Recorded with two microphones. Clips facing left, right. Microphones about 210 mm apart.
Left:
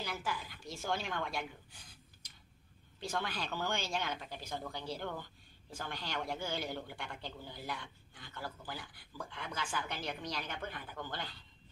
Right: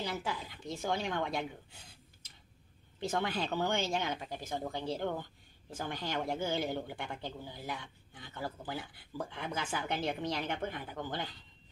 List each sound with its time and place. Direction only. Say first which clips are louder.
0.0 s a man's voice: right 3 dB; 20° right (ahead or behind)
3.0 s a man's voice: right 5 dB; 20° right (ahead or behind)